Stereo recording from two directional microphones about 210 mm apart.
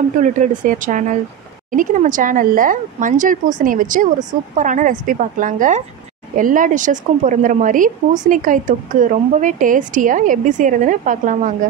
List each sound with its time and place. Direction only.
0.2 s a woman's voice: 40° right (ahead or behind)